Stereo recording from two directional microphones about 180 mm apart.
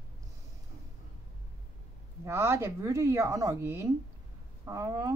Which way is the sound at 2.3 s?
15° right (ahead or behind).